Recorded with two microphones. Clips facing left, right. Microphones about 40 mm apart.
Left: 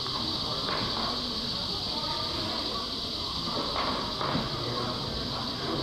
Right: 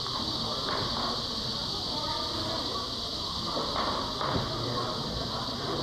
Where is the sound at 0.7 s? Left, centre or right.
Left.